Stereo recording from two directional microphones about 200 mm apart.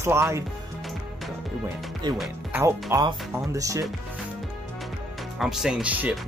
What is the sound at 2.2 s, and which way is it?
Speech, 10° right (ahead or behind).